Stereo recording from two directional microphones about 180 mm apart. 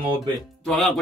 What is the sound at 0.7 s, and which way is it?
Speech, 5° left (ahead or behind).